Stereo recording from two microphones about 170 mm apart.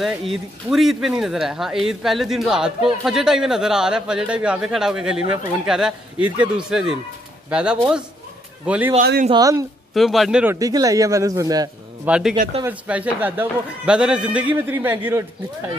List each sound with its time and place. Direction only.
0.0 s a man's voice: centre (ahead or behind)
9.3 s a man's voice: 20° right (ahead or behind)
9.9 s speech: centre (ahead or behind)
10.4 s a man's voice: 15° right (ahead or behind)
12.1 s a man's voice: 5° right (ahead or behind)